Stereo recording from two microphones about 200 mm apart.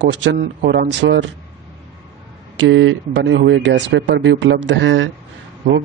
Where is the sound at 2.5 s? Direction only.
70° right (ahead or behind).